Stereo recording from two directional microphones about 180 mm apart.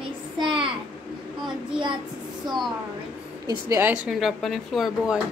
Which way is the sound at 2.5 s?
25° right (ahead or behind).